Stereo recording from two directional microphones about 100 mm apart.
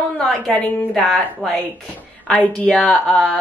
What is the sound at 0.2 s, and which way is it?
A woman's voice, 10° left (ahead or behind).